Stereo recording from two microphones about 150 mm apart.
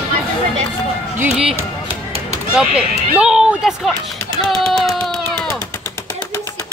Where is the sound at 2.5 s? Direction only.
5° right (ahead or behind).